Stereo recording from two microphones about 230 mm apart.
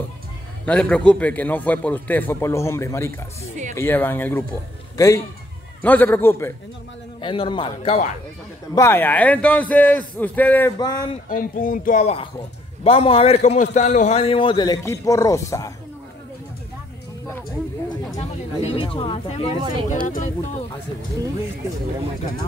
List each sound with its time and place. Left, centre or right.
0.7 s a man's voice: centre
7.2 s a man's voice: left
8.7 s a man's voice: centre
11.2 s a man's voice: left; by 15.7 s centre
18.1 s a sound: left
18.9 s a man's voice: left